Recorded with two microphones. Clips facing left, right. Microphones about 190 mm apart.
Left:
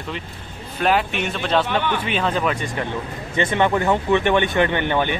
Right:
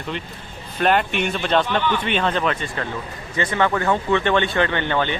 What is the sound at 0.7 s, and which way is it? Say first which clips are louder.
Speech: right 1 dB; centre (ahead or behind).